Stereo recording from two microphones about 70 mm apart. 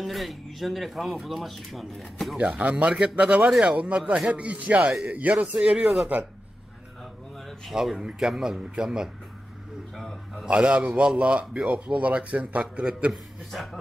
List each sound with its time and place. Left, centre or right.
0.0 s speech: centre
2.3 s a man's voice: centre
7.3 s a sound: centre
7.7 s speech: centre
9.9 s a sound: centre
10.4 s a man's voice: centre
13.1 s speech: centre